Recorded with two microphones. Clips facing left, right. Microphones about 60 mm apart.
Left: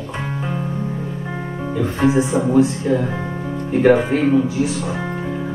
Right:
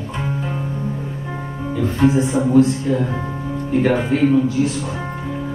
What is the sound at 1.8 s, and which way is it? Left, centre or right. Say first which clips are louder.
Speech: even; centre.